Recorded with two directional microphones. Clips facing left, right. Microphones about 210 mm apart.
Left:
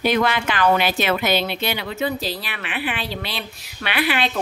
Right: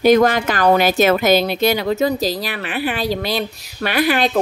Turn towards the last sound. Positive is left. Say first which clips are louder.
# right 5 dB
turn(degrees=-40)  # may be behind; listen again after turning